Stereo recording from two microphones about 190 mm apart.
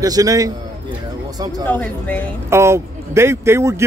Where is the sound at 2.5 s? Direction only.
15° right (ahead or behind).